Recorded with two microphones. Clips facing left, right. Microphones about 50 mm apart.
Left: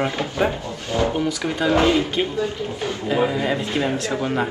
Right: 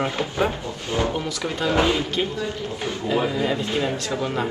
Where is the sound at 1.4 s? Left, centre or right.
Left.